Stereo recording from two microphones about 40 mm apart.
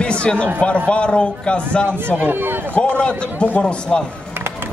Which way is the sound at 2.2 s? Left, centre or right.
Right.